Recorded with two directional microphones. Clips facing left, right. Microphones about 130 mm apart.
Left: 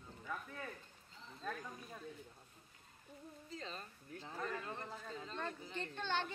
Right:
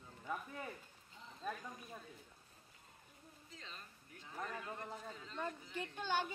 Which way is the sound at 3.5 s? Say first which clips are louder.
Left 8 dB; 35° left (ahead or behind).